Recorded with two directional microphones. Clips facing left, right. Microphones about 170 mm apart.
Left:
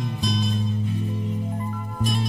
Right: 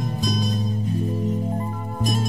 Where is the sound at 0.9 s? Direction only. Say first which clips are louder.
Right 4 dB; 40° right (ahead or behind).